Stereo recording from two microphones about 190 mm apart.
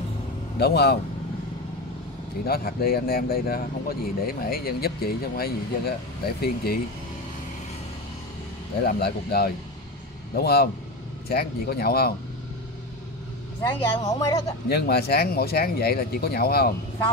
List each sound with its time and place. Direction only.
0.6 s speech: 60° left (ahead or behind)
2.4 s speech: 50° left (ahead or behind)
8.8 s speech: 55° left (ahead or behind)
14.0 s speech: 20° left (ahead or behind)
14.7 s speech: 55° left (ahead or behind)